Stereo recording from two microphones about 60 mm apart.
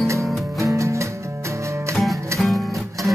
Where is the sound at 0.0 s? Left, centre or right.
Right.